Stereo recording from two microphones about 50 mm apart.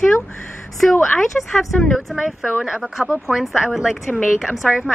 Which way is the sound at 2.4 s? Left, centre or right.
Centre.